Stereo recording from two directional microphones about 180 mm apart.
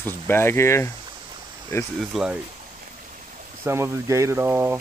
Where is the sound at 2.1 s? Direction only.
5° right (ahead or behind).